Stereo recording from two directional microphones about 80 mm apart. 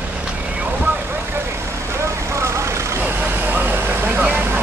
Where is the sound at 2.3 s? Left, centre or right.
Right.